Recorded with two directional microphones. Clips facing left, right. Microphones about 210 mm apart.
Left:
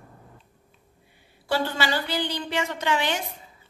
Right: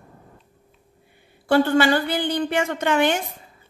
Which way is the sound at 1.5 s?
55° right (ahead or behind).